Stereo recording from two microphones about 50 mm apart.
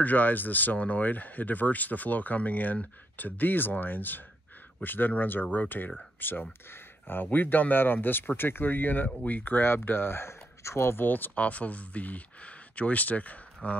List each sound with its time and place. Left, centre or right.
0.0 s speech: left
6.7 s a sound: left
7.2 s speech: left
11.1 s speech: left
11.3 s speech: left